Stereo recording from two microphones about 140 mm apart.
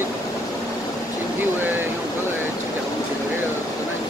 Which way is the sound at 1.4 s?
15° right (ahead or behind).